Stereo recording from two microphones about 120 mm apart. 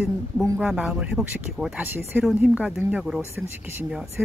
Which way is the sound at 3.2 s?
20° right (ahead or behind).